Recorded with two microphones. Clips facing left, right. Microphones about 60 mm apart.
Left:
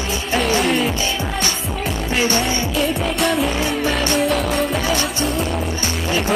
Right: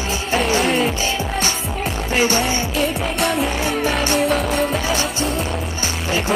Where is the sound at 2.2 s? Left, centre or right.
Right.